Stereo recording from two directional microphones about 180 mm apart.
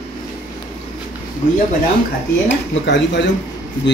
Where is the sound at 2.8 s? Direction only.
75° left (ahead or behind).